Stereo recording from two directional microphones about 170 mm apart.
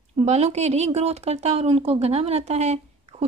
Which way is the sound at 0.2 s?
40° right (ahead or behind).